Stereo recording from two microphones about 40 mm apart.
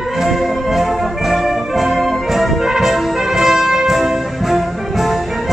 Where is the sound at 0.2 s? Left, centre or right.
Centre.